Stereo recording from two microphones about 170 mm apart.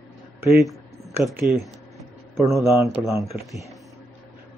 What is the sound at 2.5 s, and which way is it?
Speech, 15° right (ahead or behind).